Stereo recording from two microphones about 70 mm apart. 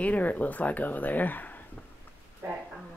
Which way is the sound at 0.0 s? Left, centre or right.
Left.